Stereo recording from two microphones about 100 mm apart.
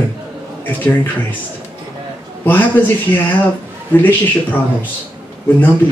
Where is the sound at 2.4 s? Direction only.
20° left (ahead or behind).